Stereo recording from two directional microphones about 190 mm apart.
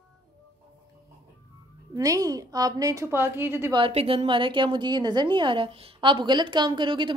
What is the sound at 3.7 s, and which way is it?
A woman's voice, 30° right (ahead or behind).